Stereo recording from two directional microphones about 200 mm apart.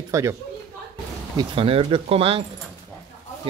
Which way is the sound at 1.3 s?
25° right (ahead or behind).